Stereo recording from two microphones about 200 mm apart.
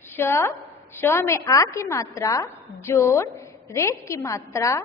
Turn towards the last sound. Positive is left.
turn(degrees=15)  # may be behind; listen again after turning